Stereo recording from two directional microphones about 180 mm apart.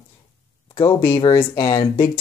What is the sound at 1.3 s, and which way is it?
Speech, 15° left (ahead or behind).